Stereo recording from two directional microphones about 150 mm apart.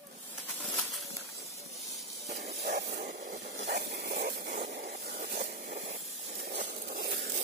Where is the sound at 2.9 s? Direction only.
75° right (ahead or behind).